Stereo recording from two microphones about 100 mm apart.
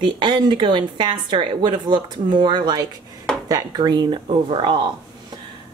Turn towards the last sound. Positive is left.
turn(degrees=-55)  # may be behind; listen again after turning